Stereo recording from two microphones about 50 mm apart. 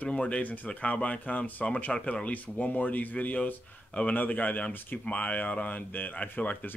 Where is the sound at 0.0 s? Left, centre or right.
Left.